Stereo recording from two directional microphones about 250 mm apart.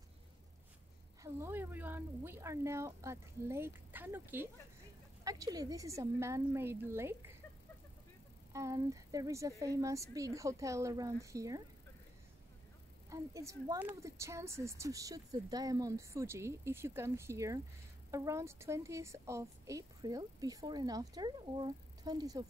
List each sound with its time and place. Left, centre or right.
1.2 s a woman's voice: centre
8.5 s a woman's voice: centre
13.1 s a woman's voice: centre